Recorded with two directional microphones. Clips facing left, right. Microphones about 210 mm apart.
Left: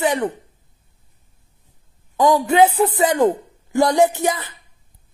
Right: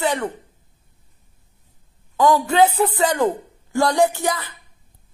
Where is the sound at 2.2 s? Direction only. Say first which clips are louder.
Left 1 dB; 20° left (ahead or behind).